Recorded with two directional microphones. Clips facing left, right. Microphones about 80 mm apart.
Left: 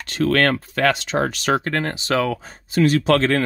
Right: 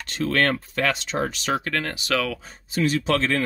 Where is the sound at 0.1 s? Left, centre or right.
Left.